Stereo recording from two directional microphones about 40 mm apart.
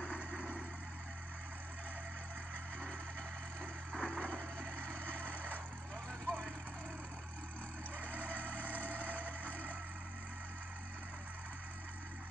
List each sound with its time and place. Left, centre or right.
0.0 s vehicle: left
3.9 s music: left
4.8 s vehicle: left
8.3 s vehicle: left
8.7 s vehicle: right
9.4 s vehicle: left